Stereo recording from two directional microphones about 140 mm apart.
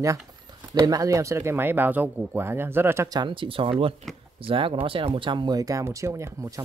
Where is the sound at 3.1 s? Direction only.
35° right (ahead or behind).